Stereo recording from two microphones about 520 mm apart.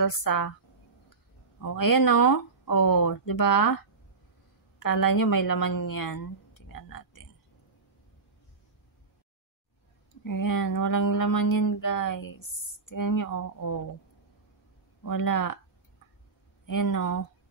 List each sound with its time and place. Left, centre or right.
0.0 s speech: left
1.6 s speech: left
4.8 s speech: left
6.7 s a sound: left
10.2 s speech: left
15.0 s speech: left
16.6 s speech: left